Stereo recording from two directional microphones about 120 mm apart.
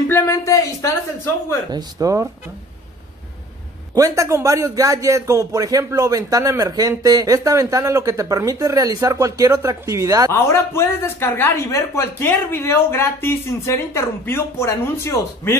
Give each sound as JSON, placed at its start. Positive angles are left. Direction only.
{"t": 0.1, "sound": "a sound", "side_deg": 20}
{"t": 1.7, "sound": "a man's voice", "side_deg": -30}
{"t": 3.9, "sound": "a man's voice", "side_deg": -30}
{"t": 10.3, "sound": "speech", "side_deg": 20}